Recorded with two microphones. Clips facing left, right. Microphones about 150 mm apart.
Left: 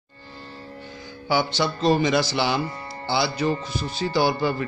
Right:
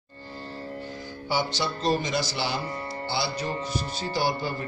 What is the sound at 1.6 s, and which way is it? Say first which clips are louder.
A man's voice: left 6 dB; 80° left.